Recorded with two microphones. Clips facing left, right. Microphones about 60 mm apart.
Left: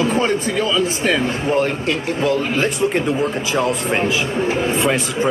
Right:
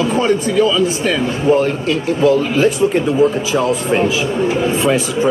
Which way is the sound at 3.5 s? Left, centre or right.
Left.